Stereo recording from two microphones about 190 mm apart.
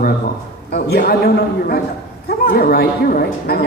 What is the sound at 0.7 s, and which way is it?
A man's voice, 55° left (ahead or behind).